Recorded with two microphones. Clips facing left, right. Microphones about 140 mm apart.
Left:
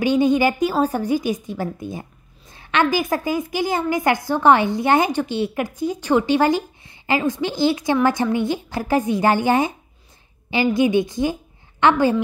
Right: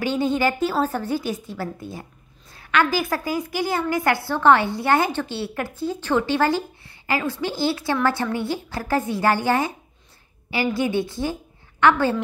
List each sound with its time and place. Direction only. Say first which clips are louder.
0.0 s a woman's voice: left 5 dB; 15° left (ahead or behind)